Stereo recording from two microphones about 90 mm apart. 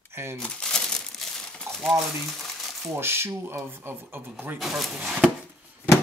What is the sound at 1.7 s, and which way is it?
Crumpling, 25° right (ahead or behind).